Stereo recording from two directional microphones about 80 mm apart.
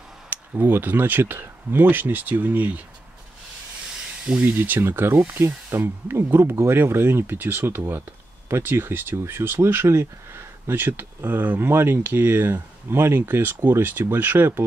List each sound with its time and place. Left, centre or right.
0.3 s speech: right
4.4 s speech: right